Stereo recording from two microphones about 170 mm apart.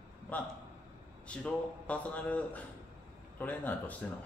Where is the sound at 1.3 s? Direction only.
5° left (ahead or behind).